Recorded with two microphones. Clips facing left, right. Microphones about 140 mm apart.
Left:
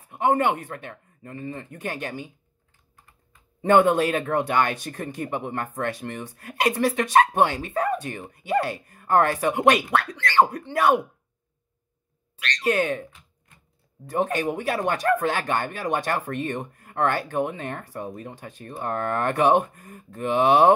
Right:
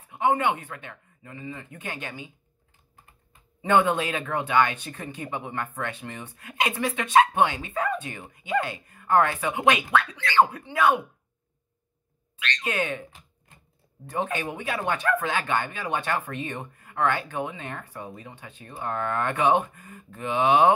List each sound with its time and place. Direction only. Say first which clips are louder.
0.1 s speech: left 2 dB; 40° left (ahead or behind)
3.6 s speech: left 4 dB; 45° left (ahead or behind)
12.4 s speech: left 5 dB; 40° left (ahead or behind)
14.2 s speech: left 6 dB; 40° left (ahead or behind)